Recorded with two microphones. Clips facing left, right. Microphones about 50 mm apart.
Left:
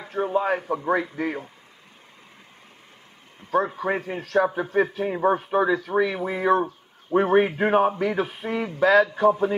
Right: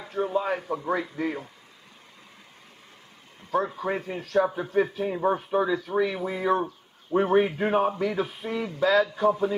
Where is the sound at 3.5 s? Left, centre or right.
Left.